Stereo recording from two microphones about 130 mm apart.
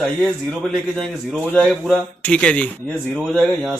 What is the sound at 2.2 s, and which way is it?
Speech, 10° left (ahead or behind).